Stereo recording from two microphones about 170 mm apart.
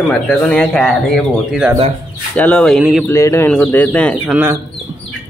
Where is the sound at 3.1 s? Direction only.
15° left (ahead or behind).